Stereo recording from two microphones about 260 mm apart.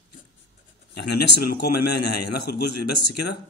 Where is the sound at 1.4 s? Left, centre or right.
Left.